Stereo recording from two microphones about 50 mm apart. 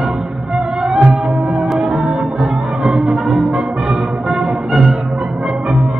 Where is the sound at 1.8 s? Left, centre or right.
Centre.